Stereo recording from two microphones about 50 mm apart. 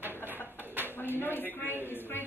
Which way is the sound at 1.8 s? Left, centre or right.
Left.